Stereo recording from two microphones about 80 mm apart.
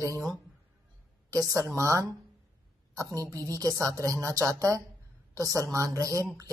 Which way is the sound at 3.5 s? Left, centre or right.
Right.